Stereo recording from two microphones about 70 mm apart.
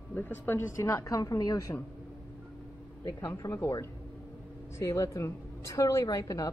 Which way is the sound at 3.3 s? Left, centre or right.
Left.